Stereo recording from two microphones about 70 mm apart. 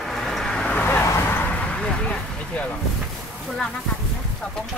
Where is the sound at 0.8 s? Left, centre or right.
Left.